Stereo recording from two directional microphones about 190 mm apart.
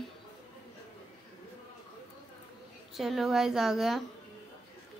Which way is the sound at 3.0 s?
Centre (ahead or behind).